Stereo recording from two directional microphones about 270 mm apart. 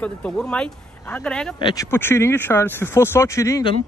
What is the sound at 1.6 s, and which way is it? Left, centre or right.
Speech, centre.